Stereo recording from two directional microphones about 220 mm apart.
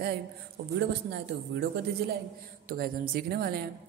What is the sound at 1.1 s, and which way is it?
A woman's voice, 50° right (ahead or behind).